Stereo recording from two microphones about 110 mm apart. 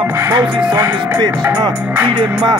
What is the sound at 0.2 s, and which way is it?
Music, 25° right (ahead or behind).